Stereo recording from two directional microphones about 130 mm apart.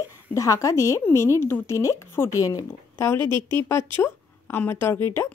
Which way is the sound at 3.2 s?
35° right (ahead or behind).